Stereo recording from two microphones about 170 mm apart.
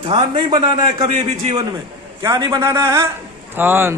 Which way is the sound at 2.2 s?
20° right (ahead or behind).